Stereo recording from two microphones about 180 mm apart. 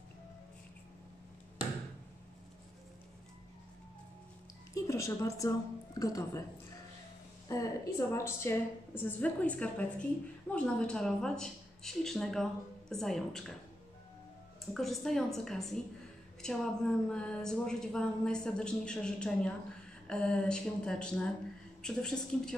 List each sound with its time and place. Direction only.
4.7 s a woman's voice: 15° left (ahead or behind)
7.4 s a woman's voice: 15° left (ahead or behind)
14.7 s a woman's voice: centre (ahead or behind)